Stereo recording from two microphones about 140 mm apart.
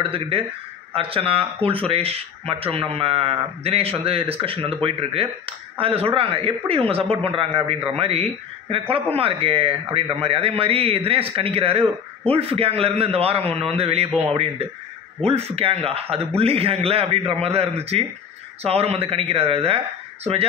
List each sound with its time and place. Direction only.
0.1 s speech: 40° right (ahead or behind)
15.2 s speech: 45° right (ahead or behind)